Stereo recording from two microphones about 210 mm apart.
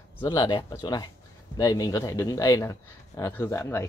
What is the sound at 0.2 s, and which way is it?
Speech, 20° left (ahead or behind).